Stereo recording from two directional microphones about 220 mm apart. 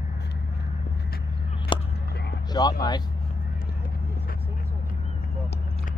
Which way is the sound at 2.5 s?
20° left (ahead or behind).